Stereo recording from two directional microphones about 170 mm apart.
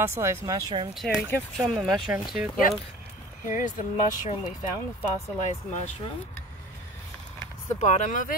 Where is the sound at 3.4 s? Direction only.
45° left (ahead or behind).